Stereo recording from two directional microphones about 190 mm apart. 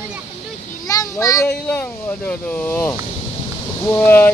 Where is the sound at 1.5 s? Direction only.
10° left (ahead or behind).